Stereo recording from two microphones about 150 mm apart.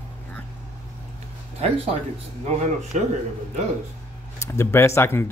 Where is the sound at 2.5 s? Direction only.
50° right (ahead or behind).